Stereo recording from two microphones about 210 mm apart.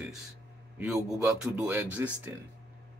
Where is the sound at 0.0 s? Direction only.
Centre (ahead or behind).